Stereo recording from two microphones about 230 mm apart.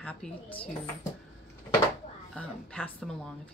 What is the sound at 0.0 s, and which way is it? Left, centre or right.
Speech, centre.